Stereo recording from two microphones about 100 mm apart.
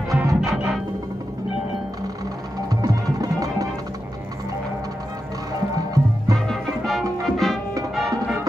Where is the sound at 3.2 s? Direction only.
35° right (ahead or behind).